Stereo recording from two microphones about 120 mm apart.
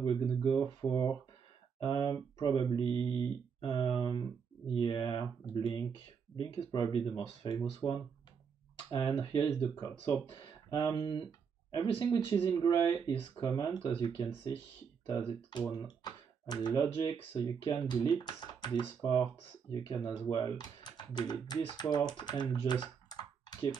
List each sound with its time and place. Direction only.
0.0 s speech: 40° left (ahead or behind)
13.5 s speech: 25° left (ahead or behind)
13.8 s speech: 40° left (ahead or behind)
15.7 s speech: 35° left (ahead or behind)